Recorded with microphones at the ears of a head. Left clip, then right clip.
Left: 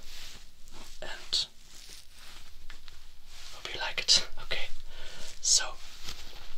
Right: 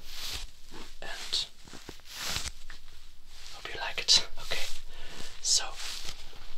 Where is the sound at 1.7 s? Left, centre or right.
Right.